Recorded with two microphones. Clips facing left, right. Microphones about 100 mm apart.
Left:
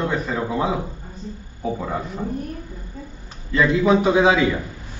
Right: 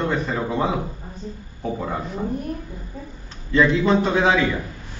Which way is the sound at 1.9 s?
Centre (ahead or behind).